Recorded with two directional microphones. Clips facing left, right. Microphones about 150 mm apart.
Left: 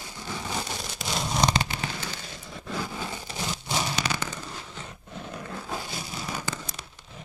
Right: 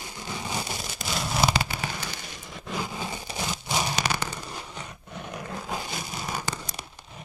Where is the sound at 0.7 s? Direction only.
5° right (ahead or behind).